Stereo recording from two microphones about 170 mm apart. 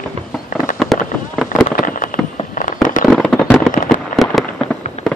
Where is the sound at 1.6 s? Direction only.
50° left (ahead or behind).